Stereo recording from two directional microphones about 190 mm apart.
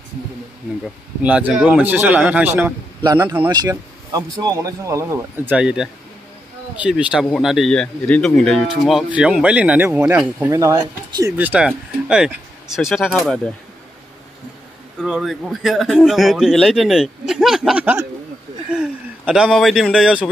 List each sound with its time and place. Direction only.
1.2 s speech: 5° right (ahead or behind)
3.0 s a man's voice: 20° right (ahead or behind); by 13.4 s centre (ahead or behind)
15.0 s a man's voice: 5° right (ahead or behind)
18.7 s a sound: 5° right (ahead or behind)
19.5 s a man's voice: centre (ahead or behind)